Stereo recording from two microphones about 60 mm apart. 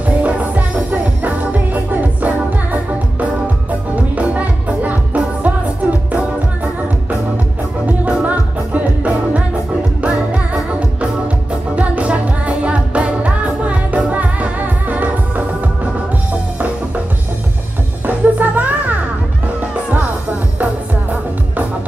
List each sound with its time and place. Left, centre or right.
0.0 s music: right
8.0 s music: right
18.0 s music: right